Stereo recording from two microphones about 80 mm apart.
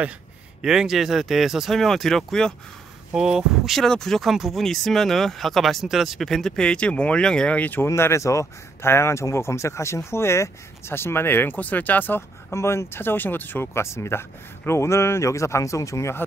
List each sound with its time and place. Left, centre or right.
0.6 s speech: centre
3.2 s speech: centre
3.8 s speech: centre
7.8 s speech: left